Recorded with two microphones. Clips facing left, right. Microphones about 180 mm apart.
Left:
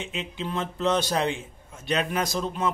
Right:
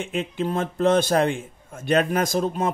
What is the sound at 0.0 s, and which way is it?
Speech, 50° right (ahead or behind).